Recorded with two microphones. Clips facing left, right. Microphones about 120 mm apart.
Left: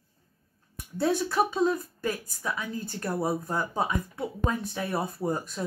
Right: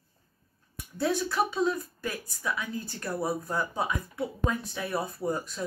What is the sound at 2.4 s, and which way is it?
Speech, 30° left (ahead or behind).